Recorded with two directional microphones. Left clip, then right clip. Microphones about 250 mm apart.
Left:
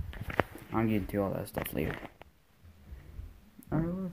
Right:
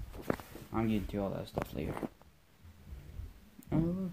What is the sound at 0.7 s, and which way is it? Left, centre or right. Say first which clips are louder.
Speech: left 4 dB; left.